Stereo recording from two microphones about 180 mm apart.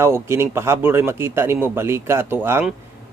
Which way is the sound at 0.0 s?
15° right (ahead or behind).